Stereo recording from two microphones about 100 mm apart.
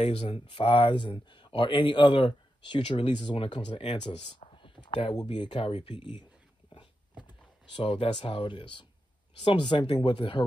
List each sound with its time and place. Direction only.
0.5 s speech: 55° left (ahead or behind)
7.7 s speech: 55° left (ahead or behind)